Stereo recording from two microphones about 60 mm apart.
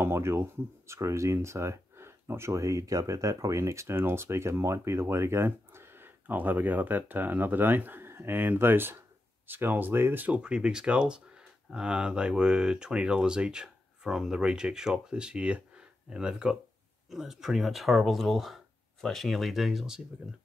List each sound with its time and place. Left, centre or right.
0.0 s speech: right
10.4 s speech: centre